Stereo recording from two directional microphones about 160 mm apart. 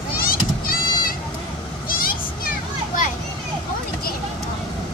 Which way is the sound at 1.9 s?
60° left (ahead or behind).